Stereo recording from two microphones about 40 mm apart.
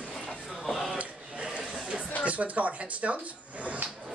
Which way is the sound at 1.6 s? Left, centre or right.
Right.